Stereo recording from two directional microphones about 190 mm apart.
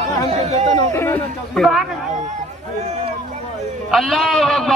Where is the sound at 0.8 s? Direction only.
15° left (ahead or behind).